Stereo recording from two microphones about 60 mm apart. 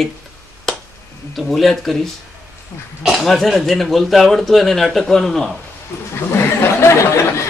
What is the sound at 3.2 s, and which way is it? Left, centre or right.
Speech, centre.